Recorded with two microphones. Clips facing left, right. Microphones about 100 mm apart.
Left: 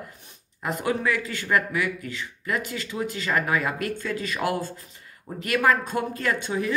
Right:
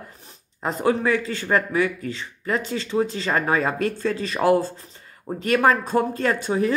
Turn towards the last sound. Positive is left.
turn(degrees=-35)  # may be behind; listen again after turning